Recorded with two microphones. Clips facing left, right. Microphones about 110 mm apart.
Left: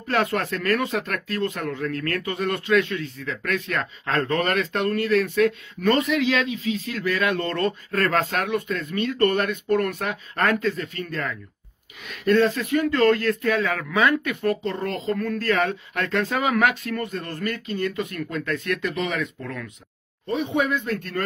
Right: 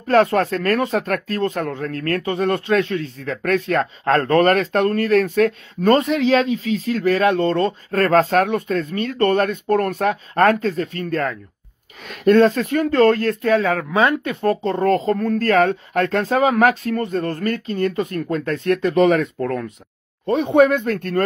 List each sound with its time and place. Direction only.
0.1 s speech: 40° right (ahead or behind)
7.3 s speech: 25° right (ahead or behind)
8.0 s speech: 35° right (ahead or behind)